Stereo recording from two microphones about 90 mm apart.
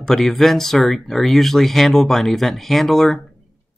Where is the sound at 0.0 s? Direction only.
5° left (ahead or behind).